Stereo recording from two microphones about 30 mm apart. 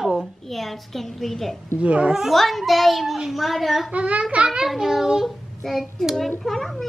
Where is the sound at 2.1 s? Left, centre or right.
Centre.